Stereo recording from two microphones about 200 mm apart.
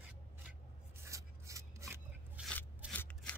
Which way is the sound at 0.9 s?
15° right (ahead or behind).